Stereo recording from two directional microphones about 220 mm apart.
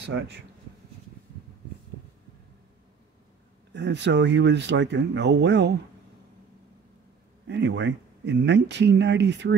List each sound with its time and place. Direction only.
0.0 s speech: 50° right (ahead or behind)
3.7 s speech: 55° right (ahead or behind)
7.4 s speech: 50° right (ahead or behind)